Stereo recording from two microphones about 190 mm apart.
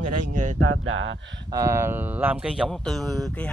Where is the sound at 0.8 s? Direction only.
90° right.